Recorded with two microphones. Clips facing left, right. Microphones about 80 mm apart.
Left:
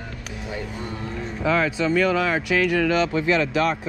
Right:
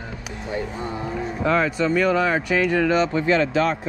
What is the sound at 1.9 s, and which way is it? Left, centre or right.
Speech, centre.